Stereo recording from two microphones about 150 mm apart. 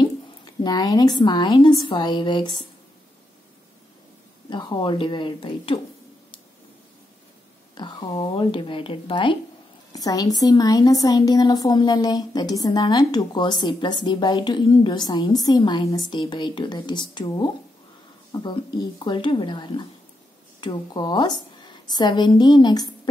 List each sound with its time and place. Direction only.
0.7 s a woman's voice: 25° left (ahead or behind)
4.5 s speech: 30° left (ahead or behind)
7.7 s a woman's voice: 30° left (ahead or behind)